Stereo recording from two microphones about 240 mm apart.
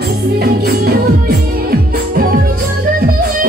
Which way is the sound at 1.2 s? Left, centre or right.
Right.